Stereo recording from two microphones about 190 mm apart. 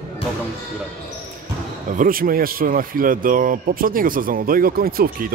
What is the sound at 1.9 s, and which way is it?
Speech, 50° right (ahead or behind).